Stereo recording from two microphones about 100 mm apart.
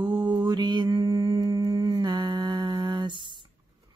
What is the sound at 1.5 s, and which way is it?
Humming, 35° right (ahead or behind).